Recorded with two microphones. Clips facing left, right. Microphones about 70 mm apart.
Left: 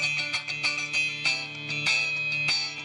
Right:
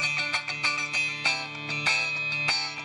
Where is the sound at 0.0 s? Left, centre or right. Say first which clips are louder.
Right 2 dB; right.